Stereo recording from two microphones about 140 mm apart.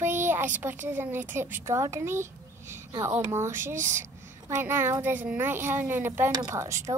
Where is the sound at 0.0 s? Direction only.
15° right (ahead or behind).